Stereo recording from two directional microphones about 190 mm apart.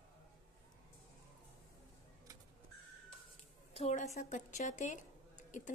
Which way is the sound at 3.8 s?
40° left (ahead or behind).